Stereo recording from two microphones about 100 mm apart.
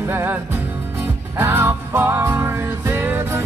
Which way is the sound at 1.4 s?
20° right (ahead or behind).